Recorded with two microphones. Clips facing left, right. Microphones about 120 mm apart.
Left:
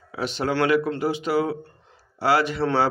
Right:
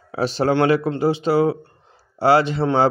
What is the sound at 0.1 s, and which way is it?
Speech, 35° right (ahead or behind).